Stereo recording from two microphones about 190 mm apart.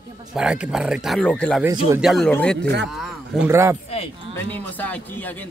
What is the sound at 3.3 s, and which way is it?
Speech, 15° right (ahead or behind).